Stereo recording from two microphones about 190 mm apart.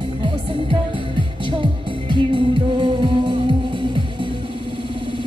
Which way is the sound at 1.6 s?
25° right (ahead or behind).